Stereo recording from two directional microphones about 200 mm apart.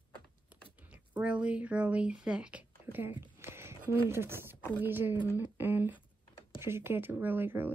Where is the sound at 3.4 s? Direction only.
10° right (ahead or behind).